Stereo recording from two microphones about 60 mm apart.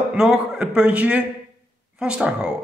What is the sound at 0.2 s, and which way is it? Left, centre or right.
A man's voice, centre.